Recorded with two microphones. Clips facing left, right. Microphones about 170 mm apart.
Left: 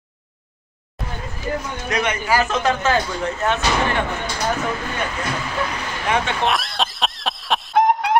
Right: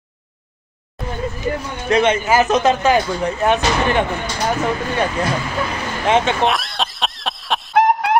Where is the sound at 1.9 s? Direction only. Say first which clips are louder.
Right 6 dB; 25° right (ahead or behind).